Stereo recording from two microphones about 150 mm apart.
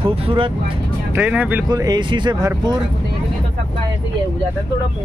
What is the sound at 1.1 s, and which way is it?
Speech, 10° right (ahead or behind).